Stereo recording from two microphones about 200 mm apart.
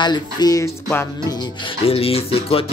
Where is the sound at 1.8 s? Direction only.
30° left (ahead or behind).